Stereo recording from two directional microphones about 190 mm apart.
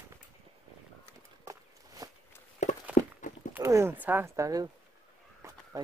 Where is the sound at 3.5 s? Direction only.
15° right (ahead or behind).